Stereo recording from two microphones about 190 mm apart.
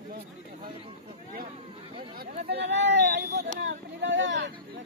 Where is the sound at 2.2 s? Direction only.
60° right (ahead or behind).